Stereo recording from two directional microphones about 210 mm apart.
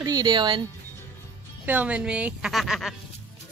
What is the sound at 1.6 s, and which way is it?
A woman's voice, 10° right (ahead or behind).